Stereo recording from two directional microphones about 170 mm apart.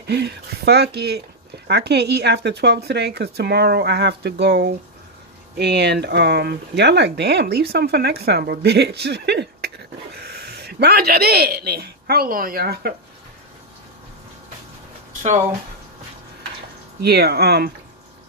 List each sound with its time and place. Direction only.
0.0 s speech: 75° right (ahead or behind)
10.1 s speech: 70° right (ahead or behind)
17.0 s speech: 70° right (ahead or behind)